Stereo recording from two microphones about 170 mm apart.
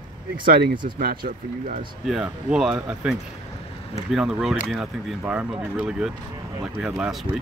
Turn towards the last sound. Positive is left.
turn(degrees=-5)  # may be behind; listen again after turning